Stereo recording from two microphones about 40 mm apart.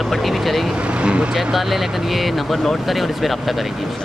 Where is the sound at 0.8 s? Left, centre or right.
Right.